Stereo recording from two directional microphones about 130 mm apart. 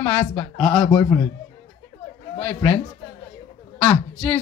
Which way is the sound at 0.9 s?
30° left (ahead or behind).